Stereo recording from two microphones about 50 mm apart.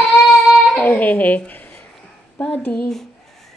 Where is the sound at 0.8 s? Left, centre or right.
Left.